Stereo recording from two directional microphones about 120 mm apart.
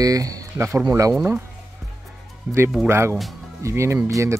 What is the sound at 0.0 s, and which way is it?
Speech, 30° right (ahead or behind).